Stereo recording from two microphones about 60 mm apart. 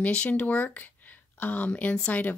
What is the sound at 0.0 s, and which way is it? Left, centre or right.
Speech, left.